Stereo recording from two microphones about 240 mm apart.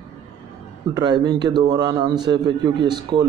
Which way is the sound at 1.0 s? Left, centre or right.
Centre.